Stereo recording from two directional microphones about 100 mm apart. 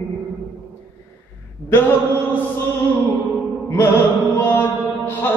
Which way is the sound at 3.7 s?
25° left (ahead or behind).